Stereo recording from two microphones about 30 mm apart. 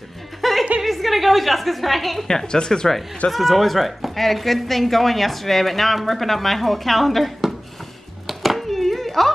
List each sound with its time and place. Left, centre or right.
0.4 s music: centre
0.8 s a woman's voice: centre
2.4 s speech: left
3.3 s speech: centre
8.3 s a sound: centre